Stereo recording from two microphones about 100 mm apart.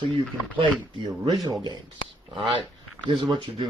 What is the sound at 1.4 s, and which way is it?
Speech, 40° right (ahead or behind).